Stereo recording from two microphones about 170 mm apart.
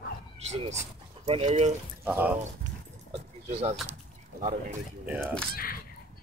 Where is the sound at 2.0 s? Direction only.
10° right (ahead or behind).